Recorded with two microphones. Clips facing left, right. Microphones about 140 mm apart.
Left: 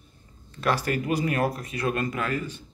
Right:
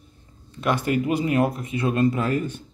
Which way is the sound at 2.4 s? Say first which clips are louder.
Right 6 dB; 55° right (ahead or behind).